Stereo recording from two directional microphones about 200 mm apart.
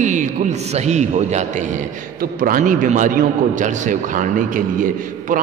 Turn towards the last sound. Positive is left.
turn(degrees=-45)  # may be behind; listen again after turning